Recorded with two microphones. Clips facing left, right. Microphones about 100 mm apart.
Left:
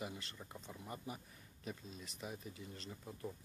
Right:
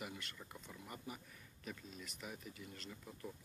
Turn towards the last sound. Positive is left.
turn(degrees=25)  # may be behind; listen again after turning